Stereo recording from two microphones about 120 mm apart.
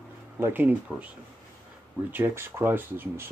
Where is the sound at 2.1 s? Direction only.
15° right (ahead or behind).